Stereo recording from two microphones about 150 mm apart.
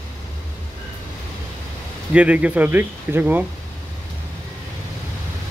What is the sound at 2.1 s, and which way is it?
Speech, 10° right (ahead or behind).